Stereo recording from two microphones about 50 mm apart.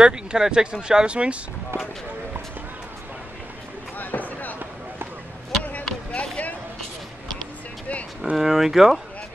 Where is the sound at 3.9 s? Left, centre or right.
Left.